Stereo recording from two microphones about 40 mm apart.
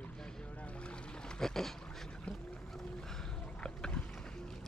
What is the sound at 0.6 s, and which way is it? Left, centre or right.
Boat, left.